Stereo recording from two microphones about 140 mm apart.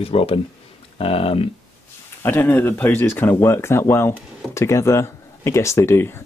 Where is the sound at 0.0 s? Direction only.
45° left (ahead or behind).